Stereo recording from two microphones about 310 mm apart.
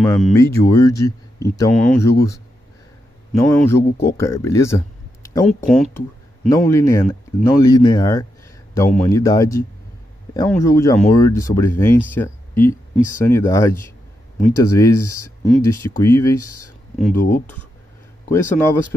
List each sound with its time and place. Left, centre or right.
0.0 s speech: centre
3.5 s speech: centre
17.1 s speech: left
18.3 s speech: centre